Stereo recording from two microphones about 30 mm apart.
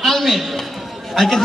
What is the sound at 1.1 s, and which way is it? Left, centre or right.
Music, centre.